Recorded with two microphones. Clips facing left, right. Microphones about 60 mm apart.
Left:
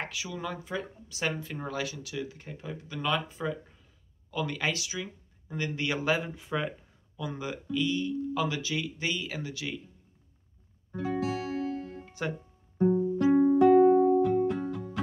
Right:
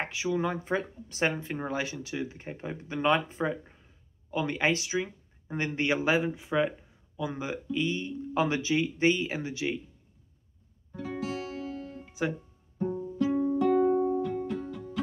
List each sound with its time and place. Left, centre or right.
0.0 s speech: right
11.2 s music: centre
12.1 s music: centre
13.2 s music: left